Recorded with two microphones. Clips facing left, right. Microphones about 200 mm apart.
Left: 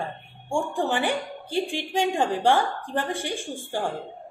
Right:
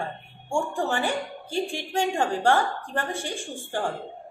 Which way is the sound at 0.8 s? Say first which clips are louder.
Left 1 dB; 15° left (ahead or behind).